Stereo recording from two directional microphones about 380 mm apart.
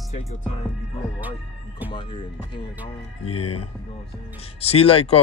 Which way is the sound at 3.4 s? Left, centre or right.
Left.